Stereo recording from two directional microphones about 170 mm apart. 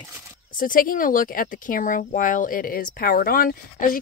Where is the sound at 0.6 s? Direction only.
55° left (ahead or behind).